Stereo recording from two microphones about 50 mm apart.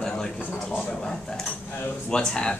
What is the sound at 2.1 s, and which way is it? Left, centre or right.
Speech, centre.